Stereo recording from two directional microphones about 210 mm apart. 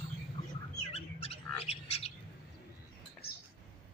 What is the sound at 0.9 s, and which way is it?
Bird, 30° left (ahead or behind).